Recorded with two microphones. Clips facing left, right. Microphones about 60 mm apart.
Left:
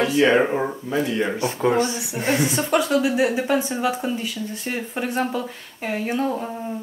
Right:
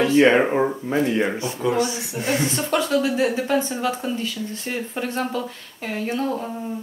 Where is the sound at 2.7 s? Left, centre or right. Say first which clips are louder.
Left 1 dB; centre.